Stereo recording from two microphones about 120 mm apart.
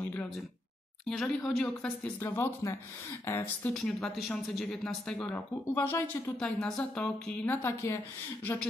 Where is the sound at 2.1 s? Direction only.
15° left (ahead or behind).